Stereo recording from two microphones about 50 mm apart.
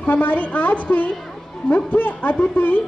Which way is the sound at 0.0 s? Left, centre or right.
Left.